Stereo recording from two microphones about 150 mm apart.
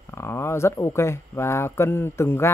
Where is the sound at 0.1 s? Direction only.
15° left (ahead or behind).